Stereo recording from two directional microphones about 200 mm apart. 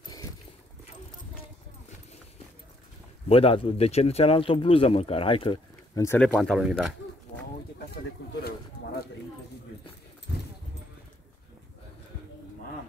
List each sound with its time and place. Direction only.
0.0 s boat: 20° left (ahead or behind)
3.3 s speech: 30° left (ahead or behind); by 6.9 s centre (ahead or behind)
8.2 s a sound: 55° left (ahead or behind)